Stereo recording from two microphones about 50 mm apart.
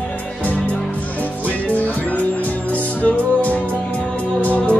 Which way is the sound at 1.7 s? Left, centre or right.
Left.